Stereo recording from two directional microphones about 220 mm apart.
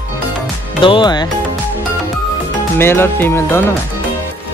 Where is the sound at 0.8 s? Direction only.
20° left (ahead or behind).